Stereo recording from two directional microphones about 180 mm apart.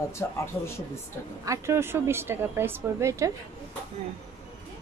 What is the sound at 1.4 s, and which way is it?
Speech, 15° right (ahead or behind).